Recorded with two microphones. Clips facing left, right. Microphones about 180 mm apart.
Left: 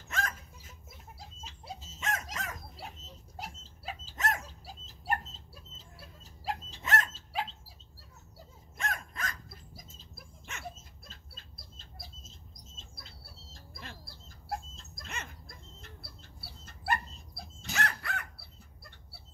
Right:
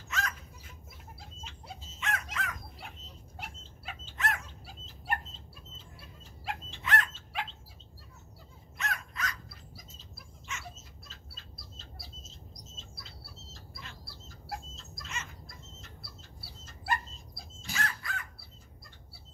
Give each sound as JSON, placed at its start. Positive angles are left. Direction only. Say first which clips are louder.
{"t": 0.1, "sound": "dog", "louder": "even", "side_deg": 50}
{"t": 1.7, "sound": "dog", "louder": "left 1 dB", "side_deg": 40}
{"t": 8.7, "sound": "dog", "louder": "left 1 dB", "side_deg": 50}